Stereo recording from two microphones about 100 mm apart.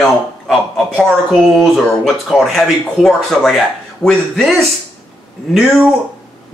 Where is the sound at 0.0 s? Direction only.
Centre (ahead or behind).